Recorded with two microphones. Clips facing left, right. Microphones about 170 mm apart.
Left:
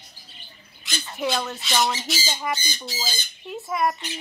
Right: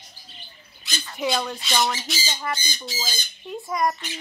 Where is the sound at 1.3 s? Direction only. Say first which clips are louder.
Even; 5° left (ahead or behind).